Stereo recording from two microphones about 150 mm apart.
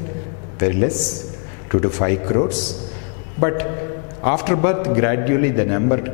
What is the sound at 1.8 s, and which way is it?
Speech, 10° left (ahead or behind).